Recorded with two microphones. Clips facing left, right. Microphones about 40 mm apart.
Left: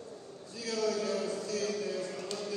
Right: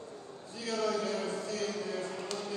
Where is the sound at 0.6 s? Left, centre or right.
Right.